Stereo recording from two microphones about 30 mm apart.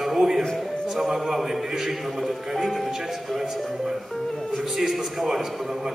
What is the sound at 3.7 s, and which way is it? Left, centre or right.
Speech, centre.